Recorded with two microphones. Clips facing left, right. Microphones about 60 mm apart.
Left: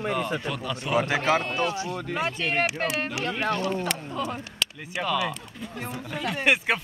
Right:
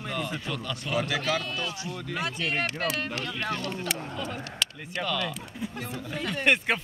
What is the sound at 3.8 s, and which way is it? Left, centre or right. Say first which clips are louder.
A man's voice: left 3 dB; centre.